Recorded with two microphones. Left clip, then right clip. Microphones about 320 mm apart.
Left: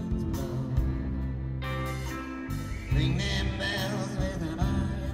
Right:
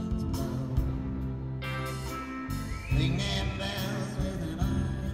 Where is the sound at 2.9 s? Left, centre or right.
Centre.